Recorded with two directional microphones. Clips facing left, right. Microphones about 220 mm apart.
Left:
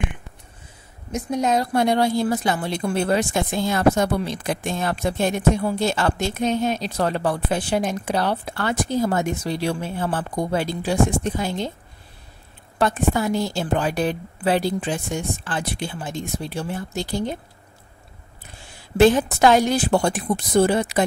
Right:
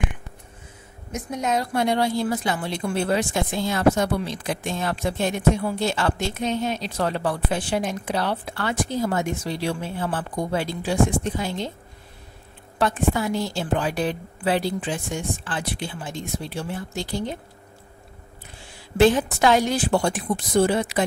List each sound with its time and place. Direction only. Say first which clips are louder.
1.1 s a woman's voice: left 4 dB; 35° left (ahead or behind)
12.7 s a woman's voice: left 2 dB; 45° left (ahead or behind)
18.9 s a woman's voice: left 2 dB; 45° left (ahead or behind)